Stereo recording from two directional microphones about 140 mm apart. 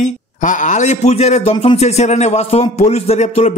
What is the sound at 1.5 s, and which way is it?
Music, 45° left (ahead or behind).